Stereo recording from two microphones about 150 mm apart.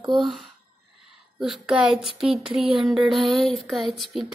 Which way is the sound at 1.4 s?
5° right (ahead or behind).